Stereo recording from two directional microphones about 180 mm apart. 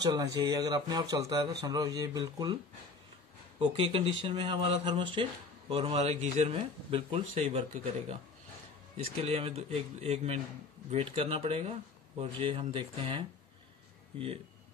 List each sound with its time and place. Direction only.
0.0 s a man's voice: 20° right (ahead or behind)
3.6 s a man's voice: 30° right (ahead or behind)